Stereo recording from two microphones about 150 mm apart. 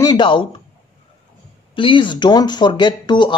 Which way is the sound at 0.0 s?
30° left (ahead or behind).